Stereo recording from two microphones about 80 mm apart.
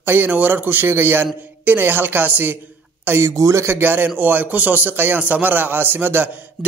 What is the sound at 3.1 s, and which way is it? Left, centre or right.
A man's voice, right.